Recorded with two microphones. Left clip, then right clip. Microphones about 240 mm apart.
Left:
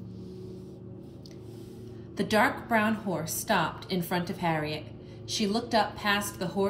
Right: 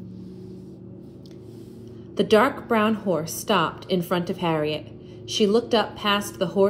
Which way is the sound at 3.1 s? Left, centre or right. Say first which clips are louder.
Right 6 dB; right.